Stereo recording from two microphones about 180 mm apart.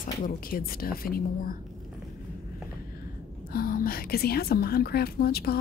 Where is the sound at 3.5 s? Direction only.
55° left (ahead or behind).